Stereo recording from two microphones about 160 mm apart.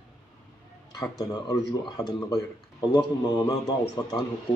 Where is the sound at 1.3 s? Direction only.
25° left (ahead or behind).